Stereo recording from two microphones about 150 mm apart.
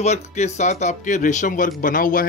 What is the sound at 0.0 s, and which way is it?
Speech, 50° left (ahead or behind).